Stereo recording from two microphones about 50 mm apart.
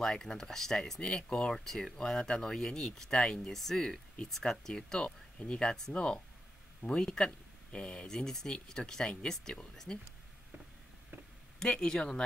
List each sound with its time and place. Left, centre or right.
0.0 s speech: centre
5.0 s speech: left
11.6 s speech: centre